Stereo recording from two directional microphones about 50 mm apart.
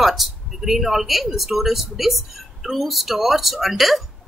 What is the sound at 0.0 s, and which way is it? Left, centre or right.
Speech, centre.